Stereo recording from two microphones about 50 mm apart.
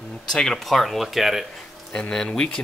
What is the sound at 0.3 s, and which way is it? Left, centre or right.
Speech, centre.